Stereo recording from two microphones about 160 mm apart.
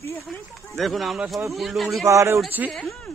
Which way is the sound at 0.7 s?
Centre (ahead or behind).